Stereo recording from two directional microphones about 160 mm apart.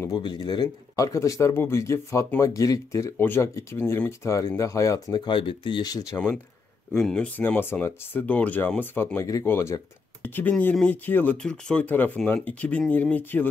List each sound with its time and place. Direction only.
0.0 s speech: 25° left (ahead or behind)
6.1 s speech: 5° left (ahead or behind)